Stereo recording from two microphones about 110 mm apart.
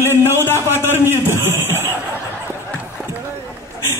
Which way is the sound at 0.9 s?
25° right (ahead or behind).